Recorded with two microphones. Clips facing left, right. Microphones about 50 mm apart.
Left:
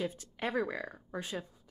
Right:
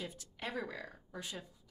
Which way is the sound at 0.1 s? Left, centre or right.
Left.